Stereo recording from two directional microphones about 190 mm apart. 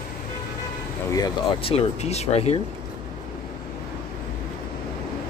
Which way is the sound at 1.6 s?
30° left (ahead or behind).